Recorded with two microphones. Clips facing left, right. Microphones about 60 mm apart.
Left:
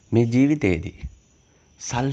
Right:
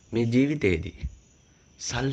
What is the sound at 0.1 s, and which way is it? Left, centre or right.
Speech, centre.